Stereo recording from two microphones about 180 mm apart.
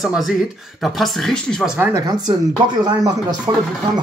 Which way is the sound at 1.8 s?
15° right (ahead or behind).